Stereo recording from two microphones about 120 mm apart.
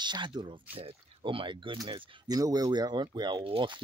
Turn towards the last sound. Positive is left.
turn(degrees=-45)  # may be behind; listen again after turning